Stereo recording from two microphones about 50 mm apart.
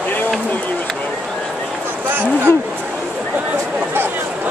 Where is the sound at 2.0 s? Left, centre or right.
Right.